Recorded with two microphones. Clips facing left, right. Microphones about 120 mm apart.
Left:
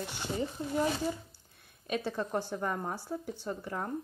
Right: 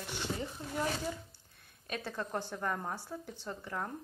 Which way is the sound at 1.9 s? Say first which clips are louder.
Left 5 dB; 10° left (ahead or behind).